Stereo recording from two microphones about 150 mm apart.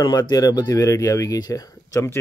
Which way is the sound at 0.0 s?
25° left (ahead or behind).